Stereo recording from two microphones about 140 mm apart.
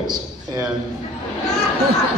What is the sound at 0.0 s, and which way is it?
Speech, 30° right (ahead or behind).